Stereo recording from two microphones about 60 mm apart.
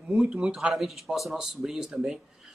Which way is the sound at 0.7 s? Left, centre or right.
Centre.